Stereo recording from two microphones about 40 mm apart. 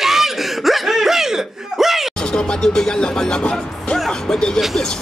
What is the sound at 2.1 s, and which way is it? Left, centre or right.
Speech, centre.